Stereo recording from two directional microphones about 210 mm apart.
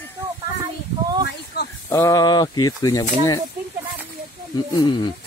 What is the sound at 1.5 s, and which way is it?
Snake, 50° left (ahead or behind).